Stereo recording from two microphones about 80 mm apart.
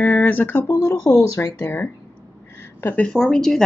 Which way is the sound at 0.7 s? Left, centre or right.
Left.